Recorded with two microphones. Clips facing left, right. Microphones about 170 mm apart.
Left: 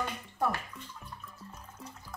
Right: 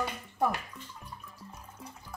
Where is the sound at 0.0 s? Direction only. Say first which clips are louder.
Right 2 dB; 15° right (ahead or behind).